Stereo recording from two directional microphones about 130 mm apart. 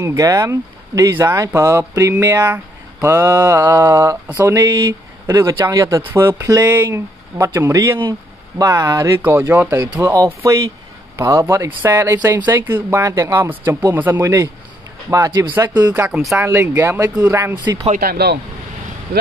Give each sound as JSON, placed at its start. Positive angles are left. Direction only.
{"t": 0.0, "sound": "speech", "side_deg": -25}
{"t": 15.0, "sound": "speech", "side_deg": -30}
{"t": 15.9, "sound": "speech", "side_deg": -10}